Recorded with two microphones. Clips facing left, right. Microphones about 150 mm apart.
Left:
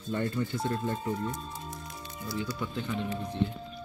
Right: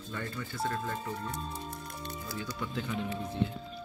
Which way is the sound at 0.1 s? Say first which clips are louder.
Left 9 dB; 25° left (ahead or behind).